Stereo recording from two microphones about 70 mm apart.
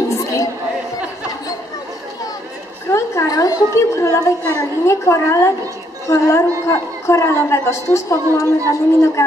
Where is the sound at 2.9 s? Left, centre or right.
Left.